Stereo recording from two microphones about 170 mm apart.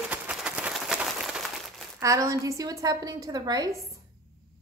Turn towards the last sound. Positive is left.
turn(degrees=-20)  # may be behind; listen again after turning